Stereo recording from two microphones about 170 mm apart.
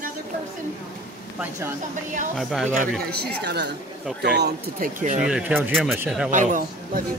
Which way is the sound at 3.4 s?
90° right.